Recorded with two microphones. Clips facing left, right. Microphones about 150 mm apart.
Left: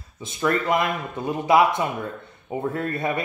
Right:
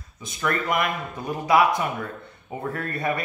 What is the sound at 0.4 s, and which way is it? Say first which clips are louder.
Speech: left 3 dB; 25° left (ahead or behind).